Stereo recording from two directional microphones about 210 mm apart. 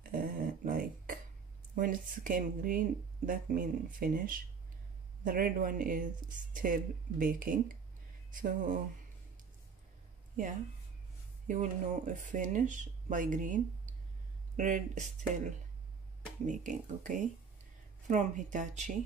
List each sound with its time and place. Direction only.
0.0 s a sound: 40° right (ahead or behind)
1.8 s speech: 40° right (ahead or behind)
11.4 s speech: 35° right (ahead or behind)